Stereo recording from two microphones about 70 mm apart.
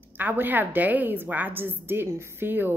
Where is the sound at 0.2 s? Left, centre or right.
Right.